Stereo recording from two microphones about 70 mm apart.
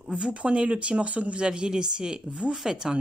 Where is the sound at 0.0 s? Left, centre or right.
Centre.